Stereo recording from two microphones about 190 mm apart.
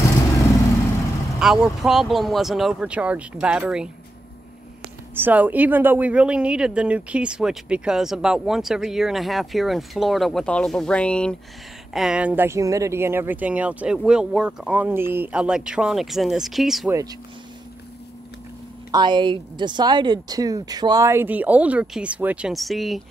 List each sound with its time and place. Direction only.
1.4 s speech: centre (ahead or behind)
5.1 s speech: 10° right (ahead or behind)
18.9 s speech: 25° right (ahead or behind); by 23.0 s centre (ahead or behind)